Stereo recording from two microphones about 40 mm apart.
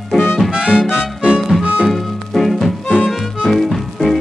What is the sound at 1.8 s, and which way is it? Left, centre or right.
Music, centre.